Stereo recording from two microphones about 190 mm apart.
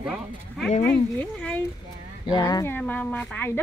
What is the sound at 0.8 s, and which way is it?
Speech, 15° left (ahead or behind).